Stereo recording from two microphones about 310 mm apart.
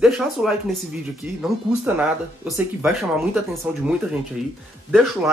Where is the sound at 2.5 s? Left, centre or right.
Centre.